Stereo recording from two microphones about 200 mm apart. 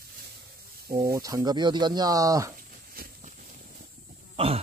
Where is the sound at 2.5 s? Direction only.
45° right (ahead or behind).